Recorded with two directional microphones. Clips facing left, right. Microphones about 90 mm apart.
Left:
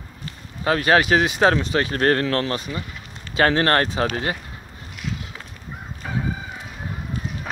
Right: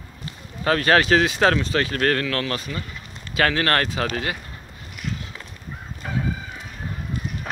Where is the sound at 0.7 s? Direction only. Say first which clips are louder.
Even; 15° left (ahead or behind).